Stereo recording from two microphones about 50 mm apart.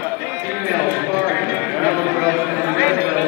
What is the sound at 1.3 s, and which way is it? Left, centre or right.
Clip-clop, right.